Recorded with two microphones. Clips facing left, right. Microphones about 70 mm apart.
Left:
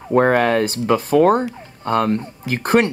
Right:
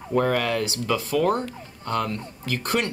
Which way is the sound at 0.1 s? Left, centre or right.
Left.